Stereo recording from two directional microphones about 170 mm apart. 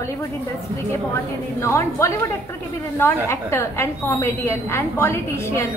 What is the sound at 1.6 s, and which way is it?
Speech, 15° left (ahead or behind).